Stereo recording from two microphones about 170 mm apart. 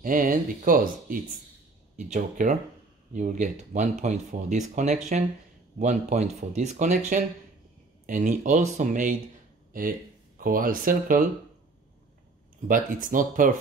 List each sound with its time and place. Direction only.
0.0 s speech: 55° right (ahead or behind)
12.6 s speech: 50° right (ahead or behind)